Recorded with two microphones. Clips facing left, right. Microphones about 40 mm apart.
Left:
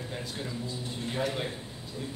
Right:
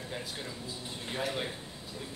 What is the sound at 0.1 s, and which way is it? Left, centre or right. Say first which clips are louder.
A man's voice: left 2 dB; centre.